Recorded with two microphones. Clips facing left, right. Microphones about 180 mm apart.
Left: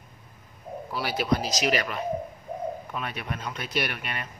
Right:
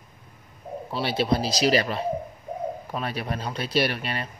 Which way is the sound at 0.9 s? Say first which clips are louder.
Right 2 dB; 25° right (ahead or behind).